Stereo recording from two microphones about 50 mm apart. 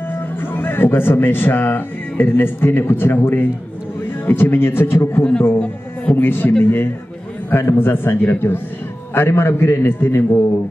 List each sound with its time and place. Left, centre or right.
0.1 s speech: left
9.9 s speech: left